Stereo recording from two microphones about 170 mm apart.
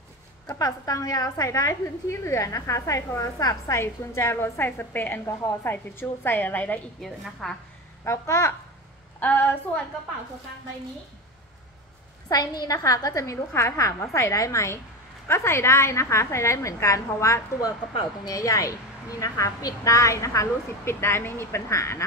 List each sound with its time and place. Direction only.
0.5 s a woman's voice: 20° left (ahead or behind); by 7.5 s 5° left (ahead or behind)
8.0 s a woman's voice: 15° left (ahead or behind)
12.3 s a woman's voice: 20° left (ahead or behind)